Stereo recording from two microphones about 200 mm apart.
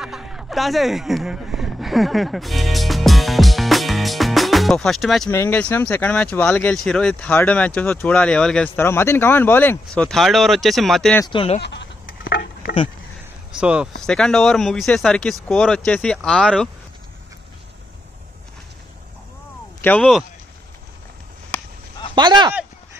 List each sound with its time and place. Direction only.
0.0 s a sound: 5° right (ahead or behind)
5.3 s speech: 10° left (ahead or behind)
11.1 s speech: 25° left (ahead or behind)
11.6 s sheep: 60° left (ahead or behind)
13.5 s speech: 5° right (ahead or behind)
19.8 s speech: 5° left (ahead or behind)
22.1 s speech: 20° right (ahead or behind)